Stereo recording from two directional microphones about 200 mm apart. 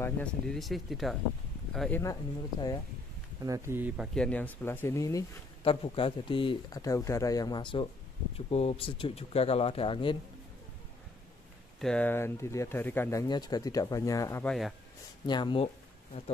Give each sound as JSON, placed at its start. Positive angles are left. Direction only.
{"t": 0.0, "sound": "speech", "side_deg": 5}
{"t": 3.4, "sound": "speech", "side_deg": -15}
{"t": 5.7, "sound": "speech", "side_deg": 25}
{"t": 11.8, "sound": "speech", "side_deg": 5}